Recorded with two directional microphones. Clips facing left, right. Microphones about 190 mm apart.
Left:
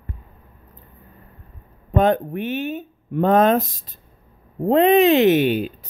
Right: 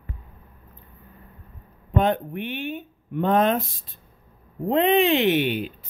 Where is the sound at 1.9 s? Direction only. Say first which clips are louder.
Left 4 dB; 40° left (ahead or behind).